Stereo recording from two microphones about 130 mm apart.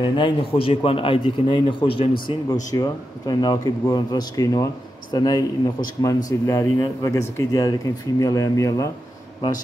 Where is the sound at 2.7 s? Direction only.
30° left (ahead or behind).